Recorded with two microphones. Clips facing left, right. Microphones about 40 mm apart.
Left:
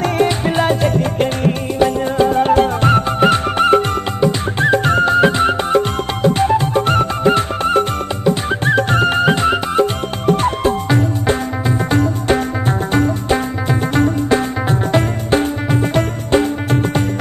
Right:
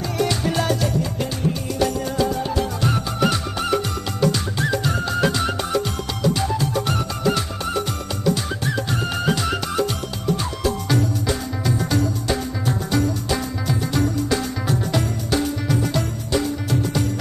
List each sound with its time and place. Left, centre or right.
0.2 s music: left
0.8 s music: left
1.8 s music: left
4.2 s music: left
4.6 s music: left